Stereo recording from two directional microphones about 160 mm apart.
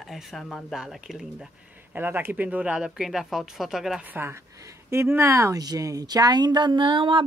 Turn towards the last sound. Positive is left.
turn(degrees=-30)  # may be behind; listen again after turning